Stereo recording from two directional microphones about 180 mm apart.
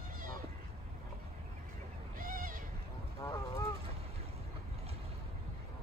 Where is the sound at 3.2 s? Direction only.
15° left (ahead or behind).